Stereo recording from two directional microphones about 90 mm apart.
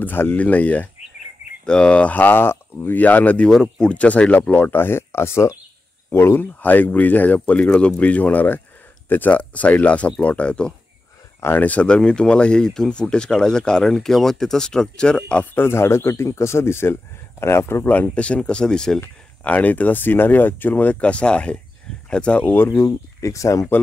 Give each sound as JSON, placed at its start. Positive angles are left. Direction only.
{"t": 0.0, "sound": "a man's voice", "side_deg": 25}
{"t": 15.6, "sound": "a man's voice", "side_deg": 30}